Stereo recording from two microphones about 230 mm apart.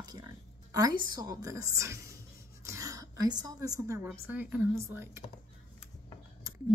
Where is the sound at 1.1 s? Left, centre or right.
Centre.